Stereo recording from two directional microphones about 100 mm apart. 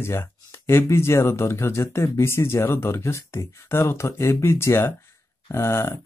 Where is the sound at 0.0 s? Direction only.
25° left (ahead or behind).